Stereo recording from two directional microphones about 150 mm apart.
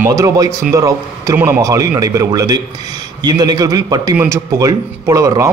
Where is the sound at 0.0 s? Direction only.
20° right (ahead or behind).